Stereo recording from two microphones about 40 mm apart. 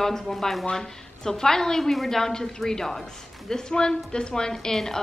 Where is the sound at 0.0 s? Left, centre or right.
Centre.